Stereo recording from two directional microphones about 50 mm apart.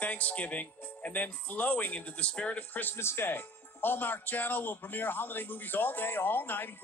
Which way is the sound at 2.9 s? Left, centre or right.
Left.